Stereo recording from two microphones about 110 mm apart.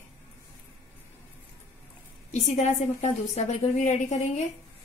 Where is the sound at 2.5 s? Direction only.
85° left.